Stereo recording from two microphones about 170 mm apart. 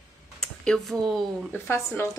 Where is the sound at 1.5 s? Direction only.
15° left (ahead or behind).